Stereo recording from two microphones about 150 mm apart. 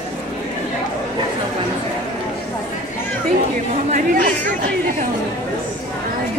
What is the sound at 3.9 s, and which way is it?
Chatter, 60° right (ahead or behind).